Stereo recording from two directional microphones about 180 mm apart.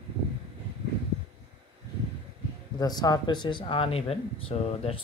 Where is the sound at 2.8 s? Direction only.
20° left (ahead or behind).